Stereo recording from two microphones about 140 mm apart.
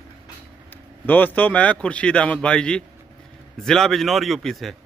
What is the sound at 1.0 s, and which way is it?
A man's voice, 10° left (ahead or behind).